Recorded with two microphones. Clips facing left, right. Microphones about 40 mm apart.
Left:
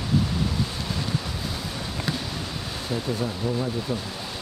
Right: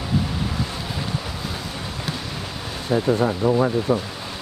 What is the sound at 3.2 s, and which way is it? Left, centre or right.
Speech, right.